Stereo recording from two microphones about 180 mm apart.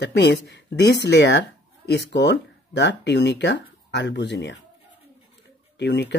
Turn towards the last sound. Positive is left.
turn(degrees=70)  # may be behind; listen again after turning